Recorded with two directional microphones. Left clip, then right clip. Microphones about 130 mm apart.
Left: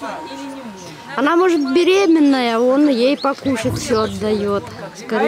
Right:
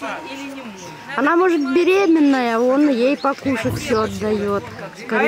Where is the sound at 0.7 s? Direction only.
Centre (ahead or behind).